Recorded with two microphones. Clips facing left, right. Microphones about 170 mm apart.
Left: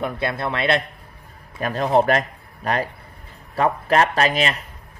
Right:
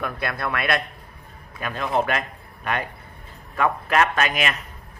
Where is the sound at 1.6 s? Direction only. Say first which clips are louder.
Left 6 dB; 35° left (ahead or behind).